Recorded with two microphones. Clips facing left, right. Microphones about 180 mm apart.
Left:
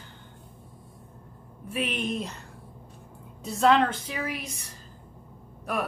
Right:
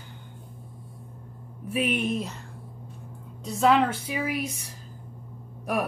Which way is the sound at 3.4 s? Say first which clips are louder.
Even; centre (ahead or behind).